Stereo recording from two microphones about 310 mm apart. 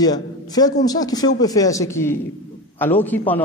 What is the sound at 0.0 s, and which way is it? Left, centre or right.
A man's voice, centre.